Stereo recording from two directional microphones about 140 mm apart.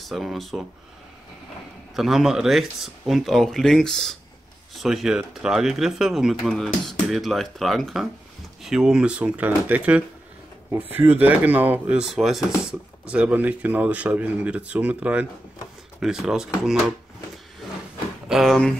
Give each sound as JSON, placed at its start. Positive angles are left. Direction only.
{"t": 0.0, "sound": "speech", "side_deg": 0}
{"t": 2.0, "sound": "speech", "side_deg": -5}
{"t": 18.3, "sound": "speech", "side_deg": 0}